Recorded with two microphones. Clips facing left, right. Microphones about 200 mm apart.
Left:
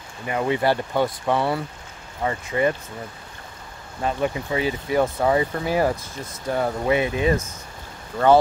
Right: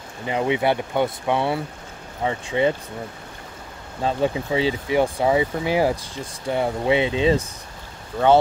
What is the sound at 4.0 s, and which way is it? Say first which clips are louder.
Speech: right 2 dB; 25° right (ahead or behind).